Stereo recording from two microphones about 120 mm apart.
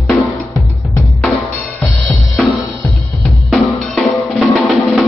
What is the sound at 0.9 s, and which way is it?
Drum, 15° left (ahead or behind).